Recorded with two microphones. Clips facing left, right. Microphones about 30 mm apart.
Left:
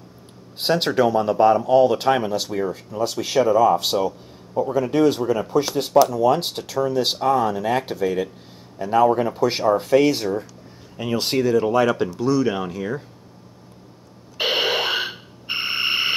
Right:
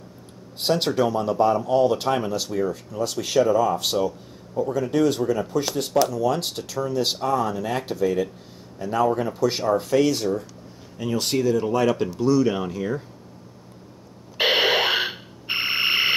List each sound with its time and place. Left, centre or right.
0.6 s speech: centre
11.8 s speech: centre
14.3 s frog: centre